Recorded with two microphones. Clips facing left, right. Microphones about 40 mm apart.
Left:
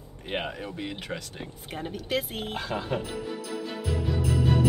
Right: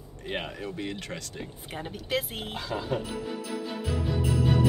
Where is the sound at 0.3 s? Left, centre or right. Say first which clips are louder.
Left 2 dB; centre.